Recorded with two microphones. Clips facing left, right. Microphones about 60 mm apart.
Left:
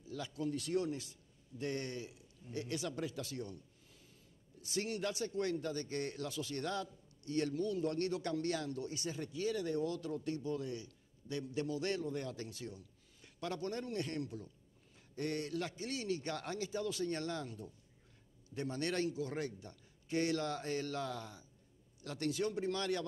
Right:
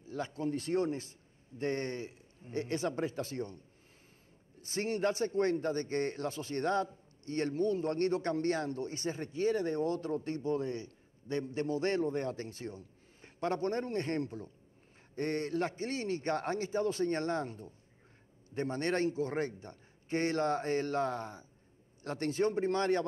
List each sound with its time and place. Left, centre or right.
0.0 s a man's voice: right